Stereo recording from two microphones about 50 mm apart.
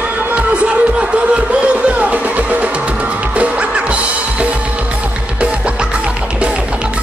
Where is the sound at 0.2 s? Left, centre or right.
Right.